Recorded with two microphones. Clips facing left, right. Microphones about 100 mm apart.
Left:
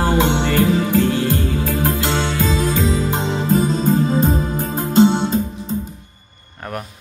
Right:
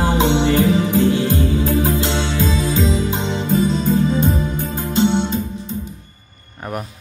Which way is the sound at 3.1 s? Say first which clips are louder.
Left 2 dB; 40° left (ahead or behind).